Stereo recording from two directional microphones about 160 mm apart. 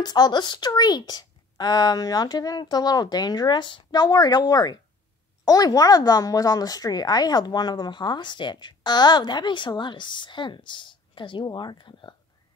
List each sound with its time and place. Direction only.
0.0 s a woman's voice: 25° left (ahead or behind)